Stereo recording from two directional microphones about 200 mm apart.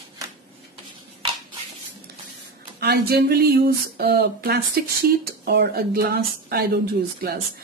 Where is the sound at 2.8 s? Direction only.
55° right (ahead or behind).